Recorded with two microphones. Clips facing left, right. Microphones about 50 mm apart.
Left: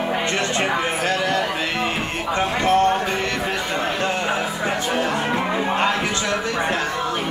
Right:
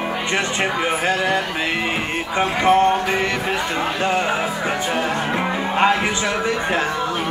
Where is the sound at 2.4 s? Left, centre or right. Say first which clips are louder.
Right 3 dB; centre.